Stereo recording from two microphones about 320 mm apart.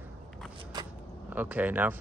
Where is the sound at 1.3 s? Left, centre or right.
Centre.